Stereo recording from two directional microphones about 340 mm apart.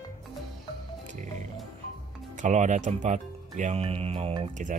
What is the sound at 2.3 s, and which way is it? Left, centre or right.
Speech, right.